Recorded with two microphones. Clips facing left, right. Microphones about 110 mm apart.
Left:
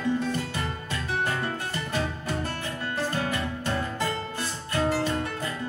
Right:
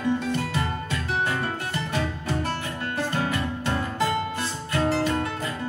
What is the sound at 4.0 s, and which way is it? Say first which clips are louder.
Music: right 5 dB; 20° right (ahead or behind).